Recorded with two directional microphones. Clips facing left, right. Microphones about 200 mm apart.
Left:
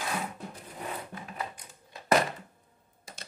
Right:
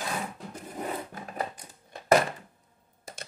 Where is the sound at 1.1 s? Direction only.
40° right (ahead or behind).